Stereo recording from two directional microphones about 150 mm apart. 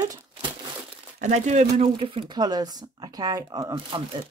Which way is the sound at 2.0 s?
35° right (ahead or behind).